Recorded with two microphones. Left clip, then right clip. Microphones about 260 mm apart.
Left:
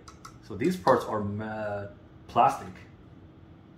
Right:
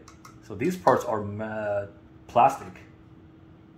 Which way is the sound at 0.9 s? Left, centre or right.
Right.